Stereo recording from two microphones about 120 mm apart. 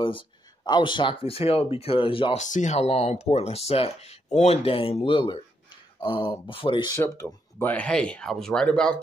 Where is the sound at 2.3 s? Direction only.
90° left; by 7.0 s 40° left (ahead or behind).